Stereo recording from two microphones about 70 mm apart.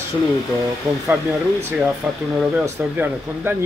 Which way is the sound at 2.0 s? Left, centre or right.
Right.